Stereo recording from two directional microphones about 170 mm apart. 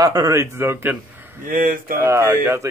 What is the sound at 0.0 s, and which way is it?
A man's voice, 20° right (ahead or behind).